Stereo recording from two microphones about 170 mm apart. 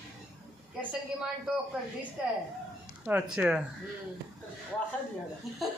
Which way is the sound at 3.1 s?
10° right (ahead or behind).